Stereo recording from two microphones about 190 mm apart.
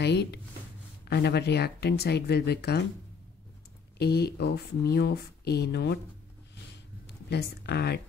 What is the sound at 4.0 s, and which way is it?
Speech, 60° left (ahead or behind).